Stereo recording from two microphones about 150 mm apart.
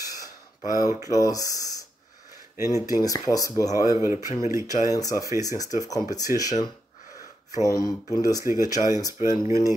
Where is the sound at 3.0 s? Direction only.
25° left (ahead or behind).